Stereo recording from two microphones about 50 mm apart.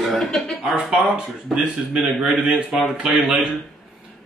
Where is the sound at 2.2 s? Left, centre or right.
Centre.